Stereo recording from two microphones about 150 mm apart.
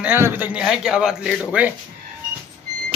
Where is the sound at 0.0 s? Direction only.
15° right (ahead or behind).